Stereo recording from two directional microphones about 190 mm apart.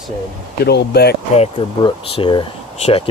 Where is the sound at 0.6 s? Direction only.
60° left (ahead or behind).